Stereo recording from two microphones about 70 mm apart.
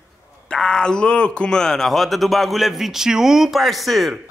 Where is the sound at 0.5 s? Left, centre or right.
Centre.